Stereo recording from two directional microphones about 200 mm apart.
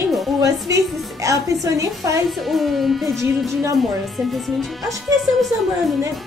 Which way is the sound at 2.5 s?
Centre (ahead or behind).